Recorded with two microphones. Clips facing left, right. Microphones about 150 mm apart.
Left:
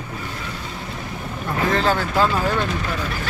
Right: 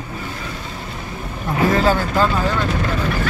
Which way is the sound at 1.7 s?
5° right (ahead or behind).